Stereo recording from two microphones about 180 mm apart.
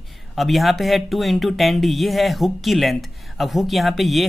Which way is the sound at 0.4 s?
Centre (ahead or behind).